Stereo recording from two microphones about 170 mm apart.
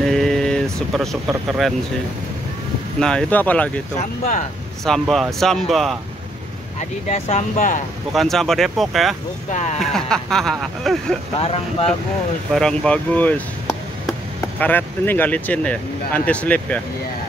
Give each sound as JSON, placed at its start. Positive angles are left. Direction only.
{"t": 0.0, "sound": "a sound", "side_deg": 0}
{"t": 3.0, "sound": "speech", "side_deg": 5}
{"t": 4.2, "sound": "speech", "side_deg": 45}
{"t": 4.8, "sound": "speech", "side_deg": 0}
{"t": 6.8, "sound": "speech", "side_deg": 40}
{"t": 8.1, "sound": "speech", "side_deg": 0}
{"t": 9.5, "sound": "speech", "side_deg": 45}
{"t": 9.8, "sound": "speech", "side_deg": 5}
{"t": 11.3, "sound": "speech", "side_deg": 35}
{"t": 12.5, "sound": "speech", "side_deg": 5}
{"t": 14.6, "sound": "speech", "side_deg": 10}